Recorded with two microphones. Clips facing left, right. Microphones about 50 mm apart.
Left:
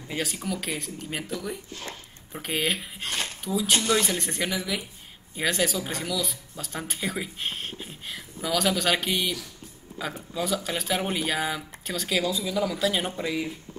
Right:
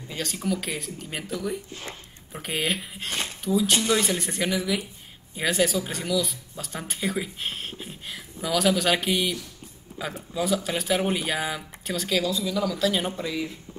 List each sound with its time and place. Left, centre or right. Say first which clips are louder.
0.1 s speech: right 2 dB; centre
1.7 s speech: even; right
2.3 s speech: even; centre
12.3 s speech: right 1 dB; centre